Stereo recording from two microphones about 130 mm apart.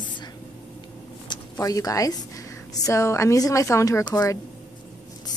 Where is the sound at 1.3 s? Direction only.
35° left (ahead or behind).